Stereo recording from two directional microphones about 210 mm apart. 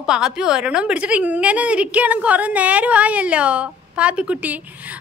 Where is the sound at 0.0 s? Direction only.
5° right (ahead or behind).